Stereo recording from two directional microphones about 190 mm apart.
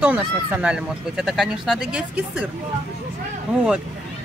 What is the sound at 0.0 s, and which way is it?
A man's voice, 5° right (ahead or behind).